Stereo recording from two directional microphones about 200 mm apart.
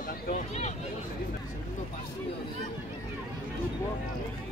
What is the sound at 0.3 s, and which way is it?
Speech, 35° left (ahead or behind).